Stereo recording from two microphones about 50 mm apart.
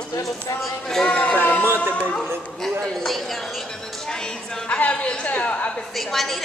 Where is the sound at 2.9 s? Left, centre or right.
Centre.